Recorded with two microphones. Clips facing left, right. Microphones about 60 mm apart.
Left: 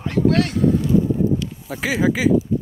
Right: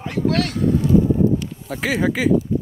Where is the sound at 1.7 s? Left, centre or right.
Centre.